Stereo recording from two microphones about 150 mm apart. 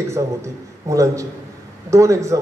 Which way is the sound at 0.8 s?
20° right (ahead or behind).